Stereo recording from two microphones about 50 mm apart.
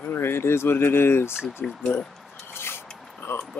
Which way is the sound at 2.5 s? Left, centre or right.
Left.